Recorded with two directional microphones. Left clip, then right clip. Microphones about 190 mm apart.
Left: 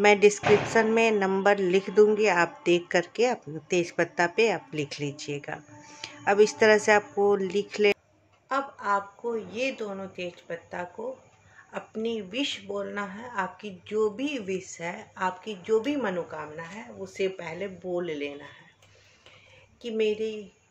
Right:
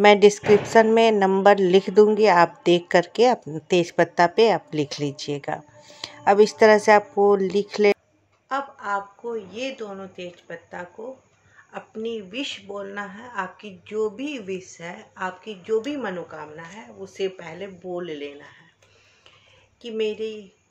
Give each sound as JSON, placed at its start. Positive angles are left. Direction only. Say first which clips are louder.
{"t": 0.0, "sound": "a woman's voice", "louder": "right 5 dB", "side_deg": -25}
{"t": 8.5, "sound": "speech", "louder": "right 1 dB", "side_deg": -5}
{"t": 19.8, "sound": "speech", "louder": "right 1 dB", "side_deg": -5}